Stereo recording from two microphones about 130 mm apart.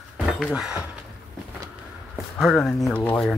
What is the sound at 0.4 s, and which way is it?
Speech, centre (ahead or behind).